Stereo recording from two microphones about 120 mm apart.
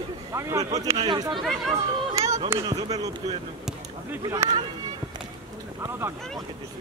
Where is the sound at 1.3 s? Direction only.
Centre (ahead or behind).